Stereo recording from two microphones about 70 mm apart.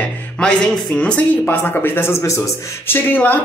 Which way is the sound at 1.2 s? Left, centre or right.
Left.